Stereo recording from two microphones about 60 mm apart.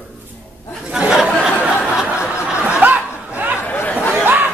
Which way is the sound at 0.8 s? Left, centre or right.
Centre.